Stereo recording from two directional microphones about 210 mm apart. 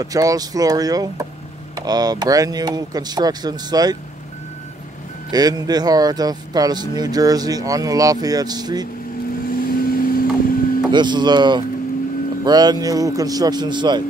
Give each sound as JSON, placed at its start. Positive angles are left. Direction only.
{"t": 0.0, "sound": "speech", "side_deg": -15}
{"t": 5.3, "sound": "speech", "side_deg": -20}
{"t": 9.5, "sound": "vehicle", "side_deg": 45}
{"t": 10.9, "sound": "a man's voice", "side_deg": -20}